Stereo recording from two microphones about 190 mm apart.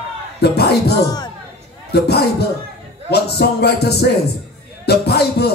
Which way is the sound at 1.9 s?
60° left (ahead or behind).